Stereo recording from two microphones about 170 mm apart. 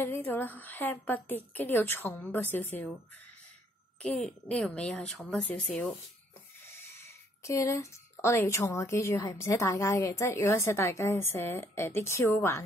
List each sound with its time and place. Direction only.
0.0 s speech: 15° left (ahead or behind)
4.0 s a woman's voice: 5° left (ahead or behind)